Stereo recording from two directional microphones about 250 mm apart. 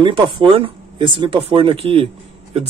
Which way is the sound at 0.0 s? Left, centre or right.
Right.